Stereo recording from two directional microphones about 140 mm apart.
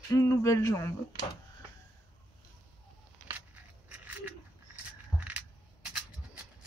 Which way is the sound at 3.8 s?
10° right (ahead or behind).